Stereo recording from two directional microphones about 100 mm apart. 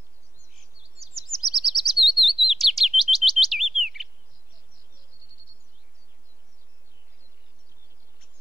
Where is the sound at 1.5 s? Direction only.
5° right (ahead or behind).